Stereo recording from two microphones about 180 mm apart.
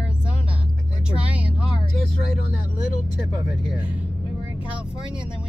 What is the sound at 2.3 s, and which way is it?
Speech, 50° left (ahead or behind).